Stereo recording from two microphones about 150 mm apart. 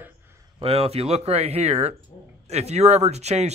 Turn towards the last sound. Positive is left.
turn(degrees=-45)  # may be behind; listen again after turning